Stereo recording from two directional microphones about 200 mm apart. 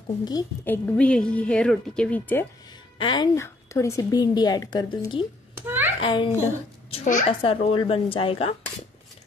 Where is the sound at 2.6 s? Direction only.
25° left (ahead or behind).